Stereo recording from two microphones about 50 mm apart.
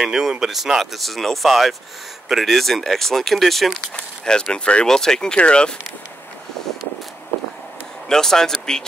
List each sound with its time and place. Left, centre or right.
0.0 s speech: centre
3.9 s speech: centre
8.1 s speech: centre